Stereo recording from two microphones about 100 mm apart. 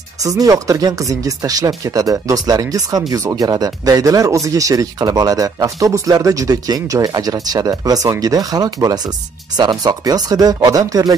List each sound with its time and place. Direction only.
0.2 s speech: 35° right (ahead or behind)